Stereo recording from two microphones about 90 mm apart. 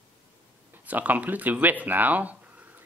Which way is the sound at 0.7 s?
20° right (ahead or behind).